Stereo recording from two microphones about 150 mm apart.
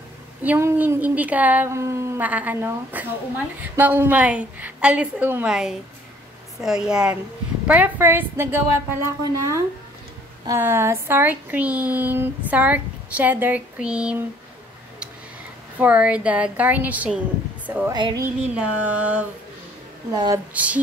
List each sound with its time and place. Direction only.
0.4 s a woman's voice: 15° right (ahead or behind)
10.6 s speech: 15° right (ahead or behind)
15.8 s speech: 10° right (ahead or behind)
17.9 s speech: 30° right (ahead or behind)
18.5 s speech: 10° right (ahead or behind)
20.5 s speech: 10° right (ahead or behind)